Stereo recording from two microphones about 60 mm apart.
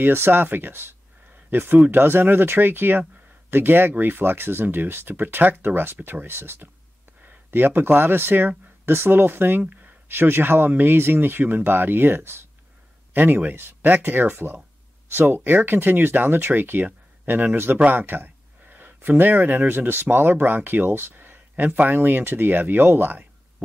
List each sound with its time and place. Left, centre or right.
0.0 s speech: right